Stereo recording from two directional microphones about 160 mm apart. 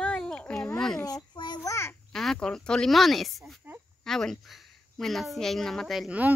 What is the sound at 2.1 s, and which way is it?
A woman's voice, centre (ahead or behind).